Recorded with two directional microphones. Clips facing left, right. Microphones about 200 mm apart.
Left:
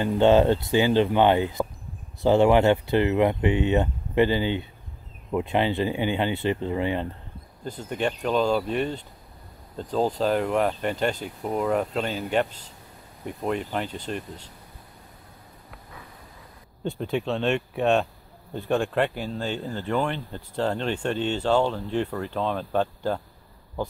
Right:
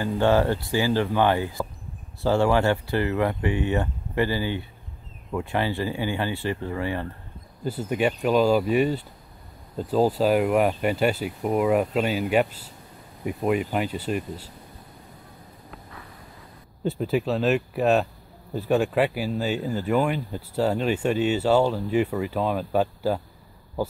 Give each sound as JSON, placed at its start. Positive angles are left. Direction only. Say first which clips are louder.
{"t": 0.0, "sound": "speech", "louder": "left 3 dB", "side_deg": 20}
{"t": 7.6, "sound": "speech", "louder": "right 4 dB", "side_deg": -10}
{"t": 16.8, "sound": "speech", "louder": "right 3 dB", "side_deg": -5}